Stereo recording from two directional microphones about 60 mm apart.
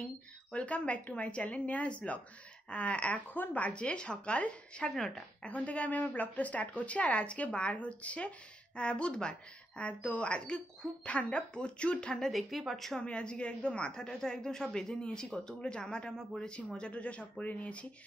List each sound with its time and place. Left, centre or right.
0.5 s speech: left
4.8 s a woman's voice: centre
5.5 s a woman's voice: left
12.1 s a woman's voice: centre
13.0 s a woman's voice: centre